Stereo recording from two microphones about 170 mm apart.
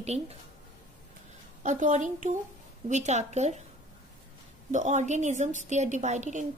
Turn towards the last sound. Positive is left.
turn(degrees=-45)  # may be behind; listen again after turning